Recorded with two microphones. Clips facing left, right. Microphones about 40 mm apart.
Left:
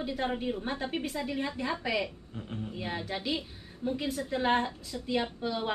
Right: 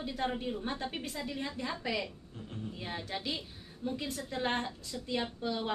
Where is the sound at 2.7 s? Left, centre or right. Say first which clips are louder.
Left 4 dB; centre.